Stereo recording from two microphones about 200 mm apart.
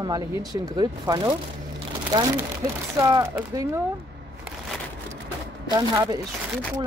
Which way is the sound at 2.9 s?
20° right (ahead or behind).